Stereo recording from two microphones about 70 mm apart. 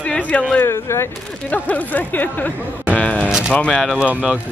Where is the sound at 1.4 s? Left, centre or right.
Left.